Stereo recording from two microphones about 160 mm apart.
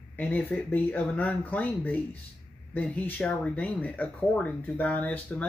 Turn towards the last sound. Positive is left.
turn(degrees=10)  # may be behind; listen again after turning